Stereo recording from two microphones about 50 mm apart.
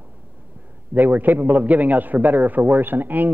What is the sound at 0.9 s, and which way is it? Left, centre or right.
A man's voice, right.